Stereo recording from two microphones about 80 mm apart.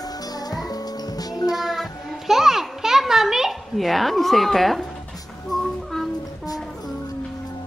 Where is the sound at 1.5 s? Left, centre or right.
Centre.